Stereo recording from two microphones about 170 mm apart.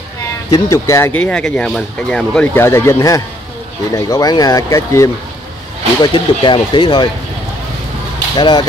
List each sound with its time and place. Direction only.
0.5 s speech: 20° left (ahead or behind)
6.0 s speech: 30° left (ahead or behind)
8.4 s speech: 25° left (ahead or behind)